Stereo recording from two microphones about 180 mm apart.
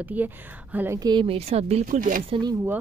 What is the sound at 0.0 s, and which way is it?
A woman's voice, 10° right (ahead or behind).